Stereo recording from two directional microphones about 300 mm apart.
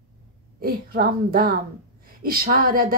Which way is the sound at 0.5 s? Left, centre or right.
Right.